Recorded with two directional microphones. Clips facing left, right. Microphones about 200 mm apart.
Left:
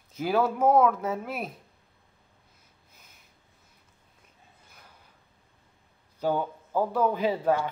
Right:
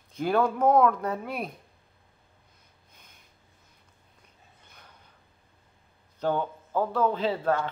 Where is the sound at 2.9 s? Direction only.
5° left (ahead or behind).